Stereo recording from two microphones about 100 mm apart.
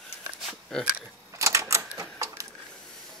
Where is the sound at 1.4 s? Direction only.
30° right (ahead or behind).